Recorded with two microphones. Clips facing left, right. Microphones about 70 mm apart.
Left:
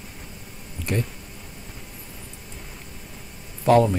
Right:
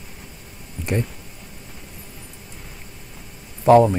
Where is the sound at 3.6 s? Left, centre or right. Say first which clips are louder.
Right 4 dB; right.